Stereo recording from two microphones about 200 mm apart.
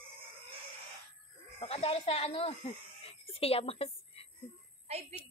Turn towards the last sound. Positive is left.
turn(degrees=-30)  # may be behind; listen again after turning